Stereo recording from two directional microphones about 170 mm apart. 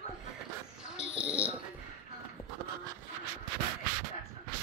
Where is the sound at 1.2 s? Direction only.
5° right (ahead or behind).